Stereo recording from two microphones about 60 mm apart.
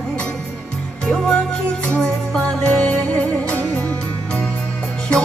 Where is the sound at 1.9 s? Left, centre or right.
Centre.